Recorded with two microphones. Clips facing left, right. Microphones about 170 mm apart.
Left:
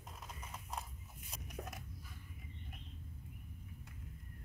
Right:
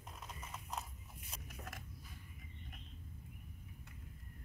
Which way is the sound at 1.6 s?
65° left (ahead or behind).